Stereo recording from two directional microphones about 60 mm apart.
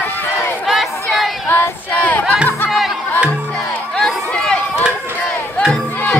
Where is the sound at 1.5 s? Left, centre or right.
Left.